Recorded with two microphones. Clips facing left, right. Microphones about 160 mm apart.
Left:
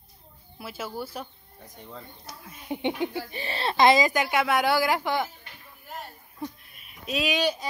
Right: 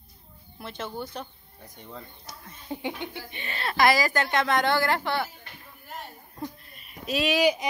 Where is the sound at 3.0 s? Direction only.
35° left (ahead or behind).